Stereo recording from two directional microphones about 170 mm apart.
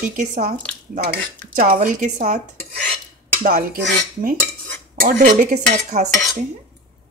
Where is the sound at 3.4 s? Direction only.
60° right (ahead or behind).